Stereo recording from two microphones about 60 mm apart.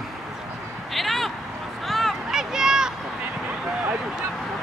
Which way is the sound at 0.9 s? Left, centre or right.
Centre.